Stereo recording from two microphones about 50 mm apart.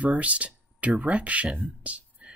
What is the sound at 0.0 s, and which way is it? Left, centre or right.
Speech, right.